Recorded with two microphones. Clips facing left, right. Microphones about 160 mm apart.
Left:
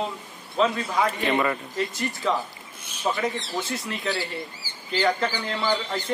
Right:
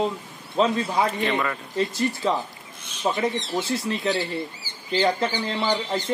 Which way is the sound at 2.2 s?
30° right (ahead or behind).